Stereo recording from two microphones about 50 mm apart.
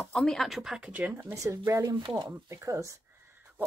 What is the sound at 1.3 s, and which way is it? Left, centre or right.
Speech, right.